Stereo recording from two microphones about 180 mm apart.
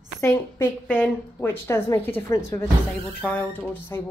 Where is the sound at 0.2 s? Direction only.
15° left (ahead or behind).